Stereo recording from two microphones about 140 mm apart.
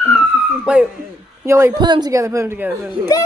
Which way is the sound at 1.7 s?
30° right (ahead or behind).